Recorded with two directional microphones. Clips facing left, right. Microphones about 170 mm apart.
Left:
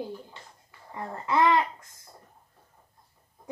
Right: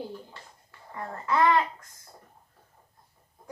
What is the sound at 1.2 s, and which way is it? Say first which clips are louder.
Speech: even; 20° left (ahead or behind).